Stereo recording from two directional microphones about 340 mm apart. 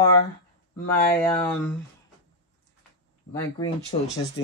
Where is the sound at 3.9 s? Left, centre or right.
Centre.